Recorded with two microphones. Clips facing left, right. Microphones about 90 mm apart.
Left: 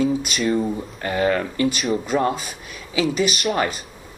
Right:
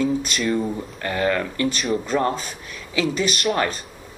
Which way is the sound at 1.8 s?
5° left (ahead or behind).